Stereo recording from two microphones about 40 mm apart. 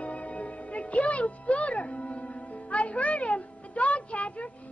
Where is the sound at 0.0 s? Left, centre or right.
Left.